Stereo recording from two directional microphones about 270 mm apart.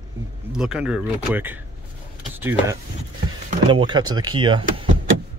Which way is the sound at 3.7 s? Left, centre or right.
Centre.